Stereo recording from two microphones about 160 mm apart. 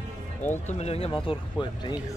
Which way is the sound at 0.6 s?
40° left (ahead or behind).